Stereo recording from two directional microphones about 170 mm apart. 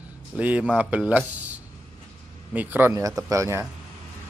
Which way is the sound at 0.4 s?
10° right (ahead or behind).